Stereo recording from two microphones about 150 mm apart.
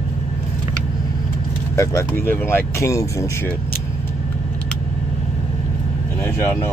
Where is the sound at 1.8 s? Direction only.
20° left (ahead or behind).